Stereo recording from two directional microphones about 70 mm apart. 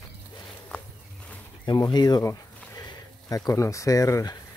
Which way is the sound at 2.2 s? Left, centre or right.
Left.